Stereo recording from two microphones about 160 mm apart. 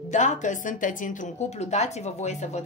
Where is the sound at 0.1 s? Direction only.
50° left (ahead or behind).